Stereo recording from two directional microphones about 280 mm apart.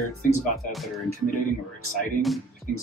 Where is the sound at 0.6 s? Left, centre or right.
Centre.